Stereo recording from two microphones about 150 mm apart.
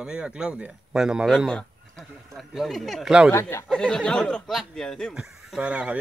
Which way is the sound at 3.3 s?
20° left (ahead or behind).